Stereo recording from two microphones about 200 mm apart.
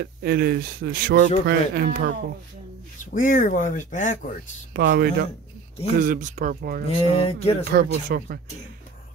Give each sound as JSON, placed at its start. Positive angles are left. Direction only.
{"t": 0.0, "sound": "speech", "side_deg": -55}
{"t": 3.0, "sound": "speech", "side_deg": 40}
{"t": 4.7, "sound": "speech", "side_deg": -50}
{"t": 5.9, "sound": "speech", "side_deg": -40}
{"t": 6.9, "sound": "speech", "side_deg": 25}
{"t": 7.6, "sound": "speech", "side_deg": -50}